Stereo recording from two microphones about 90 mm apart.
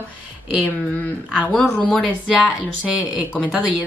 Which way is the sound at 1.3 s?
5° left (ahead or behind).